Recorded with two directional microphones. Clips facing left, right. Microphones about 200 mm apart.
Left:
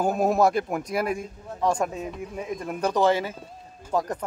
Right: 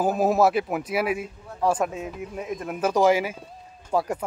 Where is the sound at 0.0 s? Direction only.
Centre (ahead or behind).